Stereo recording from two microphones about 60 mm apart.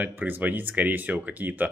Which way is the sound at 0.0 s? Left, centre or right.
Right.